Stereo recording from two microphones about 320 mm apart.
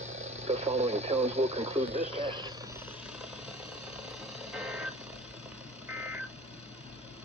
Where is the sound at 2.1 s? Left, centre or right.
Centre.